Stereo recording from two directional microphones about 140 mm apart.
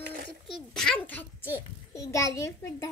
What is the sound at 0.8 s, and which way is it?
A child's voice, 5° left (ahead or behind).